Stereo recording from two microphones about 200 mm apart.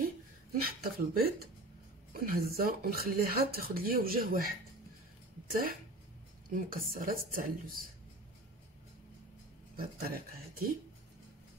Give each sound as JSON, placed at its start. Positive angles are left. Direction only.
{"t": 0.6, "sound": "speech", "side_deg": -50}
{"t": 9.8, "sound": "speech", "side_deg": -50}